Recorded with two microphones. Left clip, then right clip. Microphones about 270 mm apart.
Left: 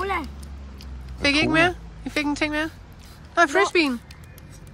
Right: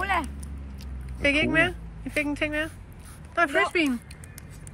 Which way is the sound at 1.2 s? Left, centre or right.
Centre.